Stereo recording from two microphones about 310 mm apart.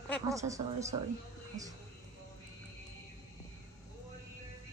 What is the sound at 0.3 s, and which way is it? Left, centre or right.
Speech, centre.